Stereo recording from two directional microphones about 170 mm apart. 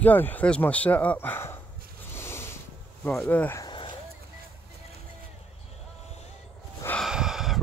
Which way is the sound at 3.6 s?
30° left (ahead or behind).